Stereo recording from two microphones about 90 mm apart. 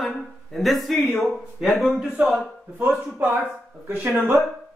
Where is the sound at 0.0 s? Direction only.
Centre (ahead or behind).